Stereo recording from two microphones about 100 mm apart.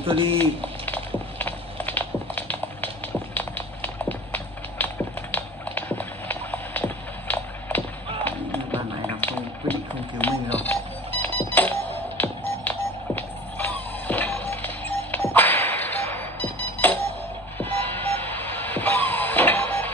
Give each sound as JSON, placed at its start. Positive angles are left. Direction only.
{"t": 0.0, "sound": "speech", "side_deg": -65}
{"t": 0.4, "sound": "typing", "side_deg": 15}
{"t": 3.3, "sound": "a sound", "side_deg": 15}
{"t": 17.6, "sound": "music", "side_deg": 15}